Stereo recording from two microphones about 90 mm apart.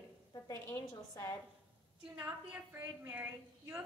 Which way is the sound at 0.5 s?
30° left (ahead or behind).